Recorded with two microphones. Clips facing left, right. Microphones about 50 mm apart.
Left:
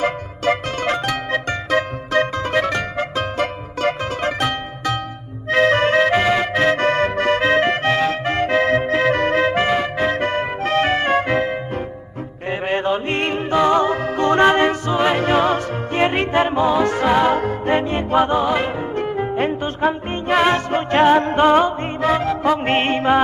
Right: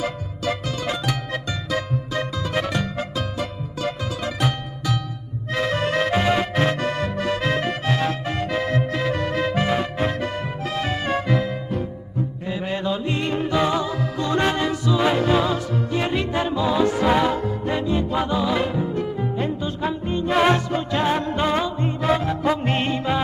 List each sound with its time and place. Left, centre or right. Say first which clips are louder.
0.0 s music: left 6 dB; left